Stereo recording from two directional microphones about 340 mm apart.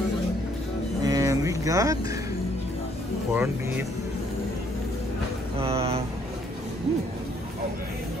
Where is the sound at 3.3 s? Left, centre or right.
Centre.